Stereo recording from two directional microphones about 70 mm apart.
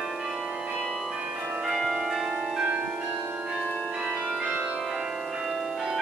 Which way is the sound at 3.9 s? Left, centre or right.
Centre.